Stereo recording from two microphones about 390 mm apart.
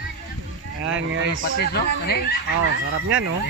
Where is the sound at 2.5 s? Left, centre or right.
Right.